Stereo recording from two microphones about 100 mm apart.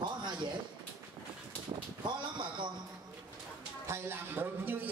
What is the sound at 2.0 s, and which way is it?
Speech, 50° right (ahead or behind).